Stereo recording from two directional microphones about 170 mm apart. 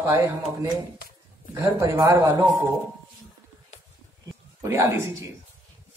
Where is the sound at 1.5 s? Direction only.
15° right (ahead or behind).